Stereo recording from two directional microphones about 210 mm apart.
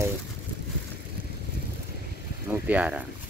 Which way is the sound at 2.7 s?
5° right (ahead or behind).